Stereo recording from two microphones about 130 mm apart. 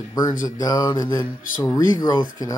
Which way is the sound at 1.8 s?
30° left (ahead or behind).